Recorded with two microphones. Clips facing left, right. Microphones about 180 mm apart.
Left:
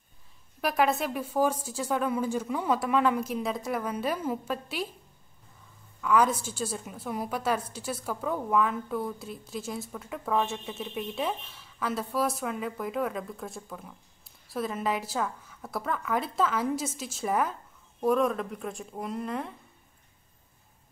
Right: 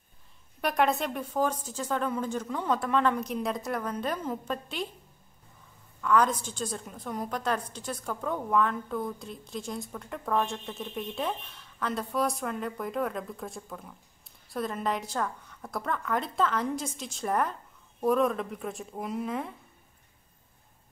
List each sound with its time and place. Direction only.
0.6 s speech: centre (ahead or behind)
5.9 s a woman's voice: 5° left (ahead or behind)